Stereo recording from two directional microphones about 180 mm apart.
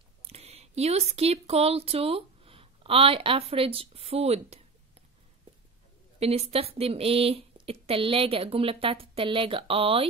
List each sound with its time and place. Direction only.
0.2 s speech: 35° right (ahead or behind)
6.1 s speech: 35° right (ahead or behind)